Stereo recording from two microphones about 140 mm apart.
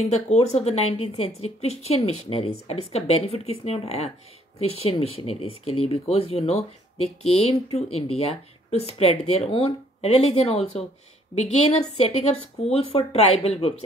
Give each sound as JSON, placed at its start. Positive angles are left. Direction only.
{"t": 0.0, "sound": "speech", "side_deg": 55}